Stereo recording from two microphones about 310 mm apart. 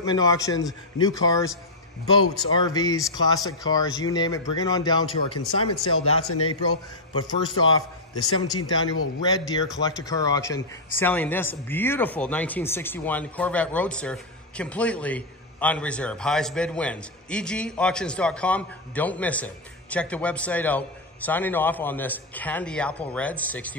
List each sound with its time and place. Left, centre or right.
0.0 s speech: centre
2.5 s speech: centre
5.4 s a man's voice: left
7.2 s speech: centre